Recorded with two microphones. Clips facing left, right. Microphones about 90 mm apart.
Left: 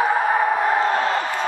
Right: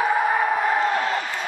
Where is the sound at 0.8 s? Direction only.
35° left (ahead or behind).